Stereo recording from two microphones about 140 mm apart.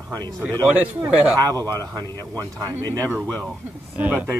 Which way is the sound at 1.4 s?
25° right (ahead or behind).